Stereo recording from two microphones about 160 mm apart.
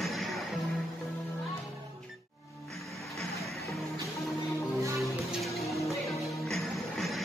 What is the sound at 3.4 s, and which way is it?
Music, centre (ahead or behind).